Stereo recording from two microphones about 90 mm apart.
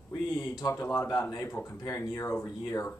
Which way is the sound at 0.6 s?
35° left (ahead or behind).